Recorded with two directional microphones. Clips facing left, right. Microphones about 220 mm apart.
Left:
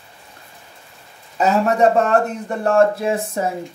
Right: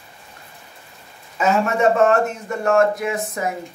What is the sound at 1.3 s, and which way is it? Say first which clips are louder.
Speech: left 2 dB; 35° left (ahead or behind).